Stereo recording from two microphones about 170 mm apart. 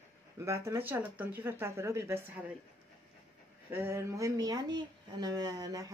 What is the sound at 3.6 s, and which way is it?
Speech, 15° right (ahead or behind).